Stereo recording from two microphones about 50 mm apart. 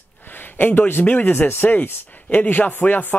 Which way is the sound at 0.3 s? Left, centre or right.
Left.